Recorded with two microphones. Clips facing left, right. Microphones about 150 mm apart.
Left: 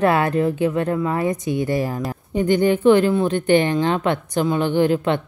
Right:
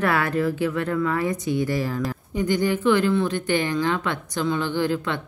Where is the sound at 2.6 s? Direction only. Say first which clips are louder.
Left 6 dB; 20° left (ahead or behind).